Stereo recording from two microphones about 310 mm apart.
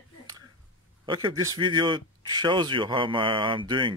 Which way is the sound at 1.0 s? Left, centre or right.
Centre.